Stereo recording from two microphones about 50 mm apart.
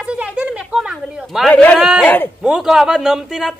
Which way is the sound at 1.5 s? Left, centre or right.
Left.